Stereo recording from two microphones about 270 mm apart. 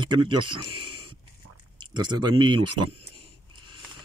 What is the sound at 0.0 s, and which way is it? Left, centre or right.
Speech, centre.